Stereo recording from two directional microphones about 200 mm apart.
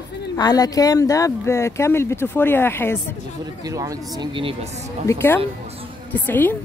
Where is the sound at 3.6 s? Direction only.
15° right (ahead or behind).